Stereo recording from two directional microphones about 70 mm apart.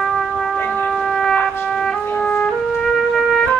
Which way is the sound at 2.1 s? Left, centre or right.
Left.